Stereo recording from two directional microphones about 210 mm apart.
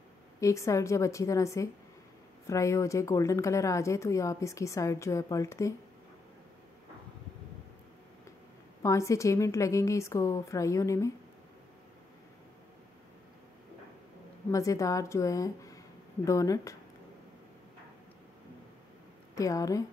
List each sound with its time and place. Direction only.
0.4 s speech: 15° left (ahead or behind)
8.8 s speech: 15° left (ahead or behind)
14.5 s speech: 15° left (ahead or behind)
19.3 s speech: 15° left (ahead or behind)